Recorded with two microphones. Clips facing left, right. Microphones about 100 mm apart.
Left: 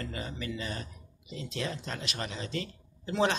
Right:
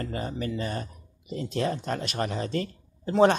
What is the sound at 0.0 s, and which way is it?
Speech, 40° right (ahead or behind).